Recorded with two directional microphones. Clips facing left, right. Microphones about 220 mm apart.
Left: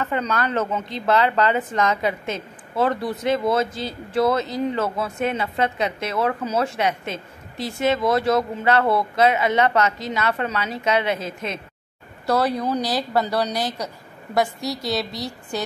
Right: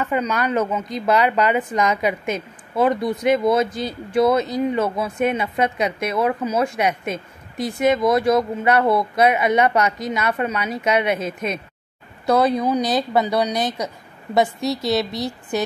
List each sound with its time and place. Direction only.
0.0 s a woman's voice: 15° right (ahead or behind)